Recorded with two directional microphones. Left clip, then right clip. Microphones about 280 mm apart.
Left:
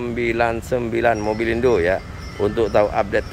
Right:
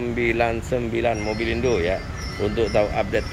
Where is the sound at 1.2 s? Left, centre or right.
Left.